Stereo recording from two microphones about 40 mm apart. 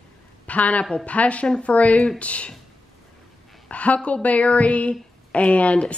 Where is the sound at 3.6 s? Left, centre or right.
Left.